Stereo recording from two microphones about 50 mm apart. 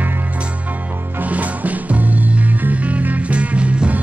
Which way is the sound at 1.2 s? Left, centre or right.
Right.